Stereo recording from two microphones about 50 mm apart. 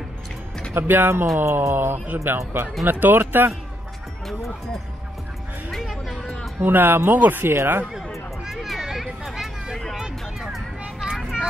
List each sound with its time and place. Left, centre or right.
0.7 s speech: right
1.2 s a sound: right
1.7 s speech: right
2.9 s speech: right
5.7 s music: centre
6.6 s speech: right
8.5 s a sound: centre